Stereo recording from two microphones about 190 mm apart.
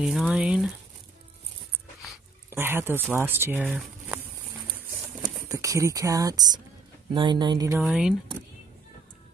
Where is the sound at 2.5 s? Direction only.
10° right (ahead or behind).